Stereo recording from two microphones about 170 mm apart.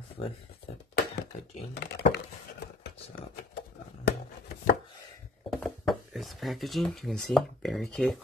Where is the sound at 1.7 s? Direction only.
75° left (ahead or behind).